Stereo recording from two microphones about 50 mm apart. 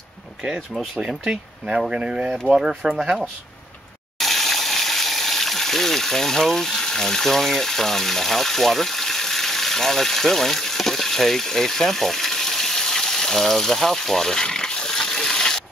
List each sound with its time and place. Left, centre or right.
1.0 s speech: centre
4.2 s water: centre